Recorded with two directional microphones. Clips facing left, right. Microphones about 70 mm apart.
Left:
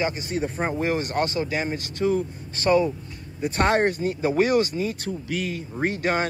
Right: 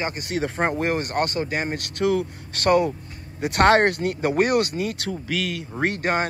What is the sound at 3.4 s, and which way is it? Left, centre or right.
Speech, right.